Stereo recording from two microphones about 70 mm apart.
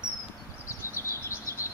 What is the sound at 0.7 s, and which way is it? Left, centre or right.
Chirp, left.